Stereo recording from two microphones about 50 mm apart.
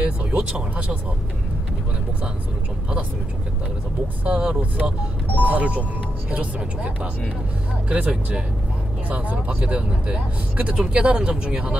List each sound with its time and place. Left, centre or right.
0.2 s speech: right
4.4 s speech: right
9.1 s speech: right